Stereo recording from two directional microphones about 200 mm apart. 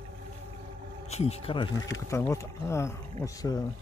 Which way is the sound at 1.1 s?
30° left (ahead or behind).